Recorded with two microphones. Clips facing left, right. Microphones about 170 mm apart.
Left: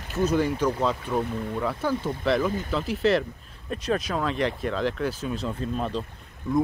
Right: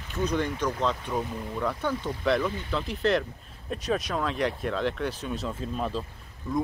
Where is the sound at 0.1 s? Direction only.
5° left (ahead or behind).